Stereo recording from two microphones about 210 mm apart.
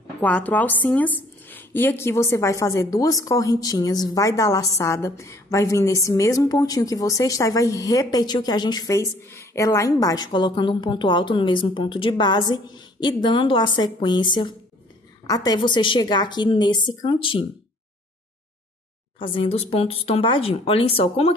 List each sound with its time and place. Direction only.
0.2 s a woman's voice: 5° left (ahead or behind); by 17.5 s 25° left (ahead or behind)
19.1 s a woman's voice: 25° left (ahead or behind)